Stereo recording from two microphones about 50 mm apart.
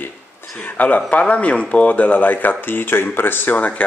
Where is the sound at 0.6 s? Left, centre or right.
Left.